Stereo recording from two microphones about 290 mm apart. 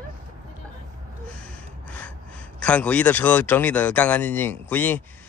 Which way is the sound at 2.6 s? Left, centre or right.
Centre.